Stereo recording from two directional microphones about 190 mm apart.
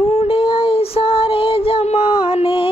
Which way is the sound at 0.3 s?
25° left (ahead or behind).